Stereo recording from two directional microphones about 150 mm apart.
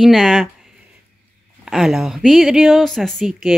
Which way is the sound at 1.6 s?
5° right (ahead or behind).